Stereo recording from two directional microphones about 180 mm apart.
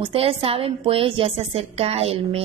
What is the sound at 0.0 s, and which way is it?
A woman's voice, 30° right (ahead or behind).